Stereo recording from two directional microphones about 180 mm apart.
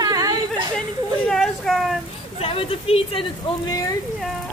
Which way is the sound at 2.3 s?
30° left (ahead or behind).